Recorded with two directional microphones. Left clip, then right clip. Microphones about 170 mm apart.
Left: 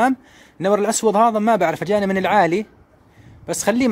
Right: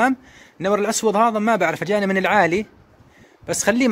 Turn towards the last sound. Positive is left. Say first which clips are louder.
# even
turn(degrees=15)  # may be behind; listen again after turning